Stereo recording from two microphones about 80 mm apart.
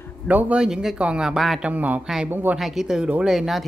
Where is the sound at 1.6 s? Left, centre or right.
Centre.